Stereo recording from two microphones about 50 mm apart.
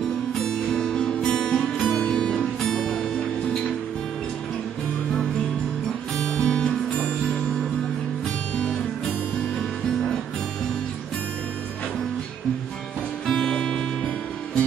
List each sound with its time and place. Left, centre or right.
0.4 s music: centre
6.1 s music: left
13.3 s music: centre